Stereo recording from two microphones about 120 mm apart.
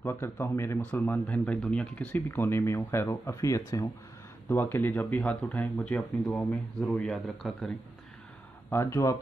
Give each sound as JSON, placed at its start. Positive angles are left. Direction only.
{"t": 0.0, "sound": "speech", "side_deg": 20}
{"t": 4.5, "sound": "speech", "side_deg": 15}
{"t": 8.6, "sound": "speech", "side_deg": 25}